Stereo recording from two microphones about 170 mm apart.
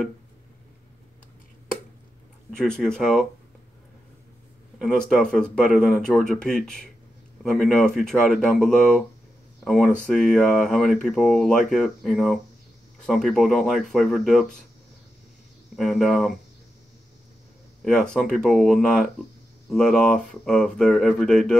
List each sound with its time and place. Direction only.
2.5 s speech: 5° left (ahead or behind)
4.7 s speech: 5° left (ahead or behind)
15.7 s speech: centre (ahead or behind)
17.8 s speech: 5° left (ahead or behind)